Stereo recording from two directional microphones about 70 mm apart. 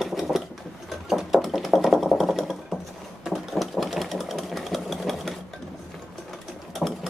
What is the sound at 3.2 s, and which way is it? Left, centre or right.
Engine, centre.